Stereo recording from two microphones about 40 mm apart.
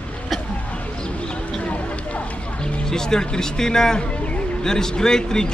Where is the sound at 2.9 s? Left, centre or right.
Centre.